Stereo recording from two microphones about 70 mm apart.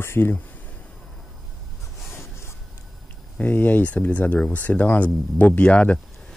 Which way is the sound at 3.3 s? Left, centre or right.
Left.